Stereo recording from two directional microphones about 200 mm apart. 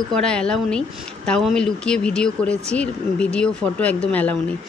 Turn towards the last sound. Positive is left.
turn(degrees=5)  # may be behind; listen again after turning